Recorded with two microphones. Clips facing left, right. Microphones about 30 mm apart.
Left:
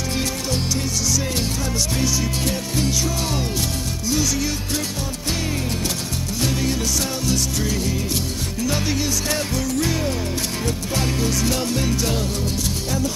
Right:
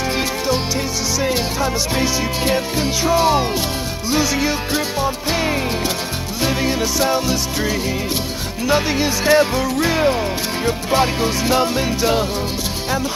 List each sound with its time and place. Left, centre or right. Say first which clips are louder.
1.2 s music: right 6 dB; right
8.6 s music: right 6 dB; right